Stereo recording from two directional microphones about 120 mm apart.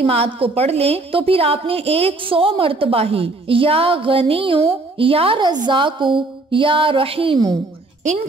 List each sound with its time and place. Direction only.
0.0 s a woman's voice: 55° right (ahead or behind)